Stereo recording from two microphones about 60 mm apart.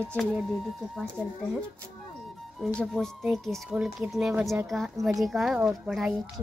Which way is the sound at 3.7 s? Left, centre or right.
Centre.